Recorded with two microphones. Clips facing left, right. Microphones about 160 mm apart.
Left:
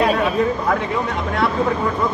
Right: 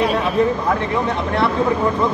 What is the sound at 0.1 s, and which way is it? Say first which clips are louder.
Speech: right 1 dB; centre (ahead or behind).